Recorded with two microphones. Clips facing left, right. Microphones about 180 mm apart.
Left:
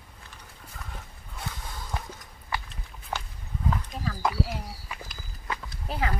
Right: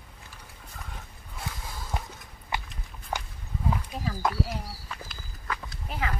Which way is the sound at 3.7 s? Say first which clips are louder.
Right 1 dB; 10° right (ahead or behind).